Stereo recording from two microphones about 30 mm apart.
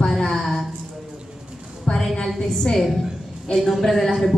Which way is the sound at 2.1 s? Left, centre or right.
Centre.